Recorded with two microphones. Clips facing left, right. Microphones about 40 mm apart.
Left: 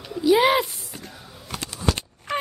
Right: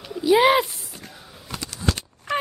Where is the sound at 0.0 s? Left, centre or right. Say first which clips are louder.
Right 1 dB; centre.